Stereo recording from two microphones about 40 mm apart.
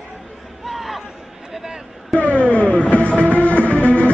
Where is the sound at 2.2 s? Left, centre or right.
Left.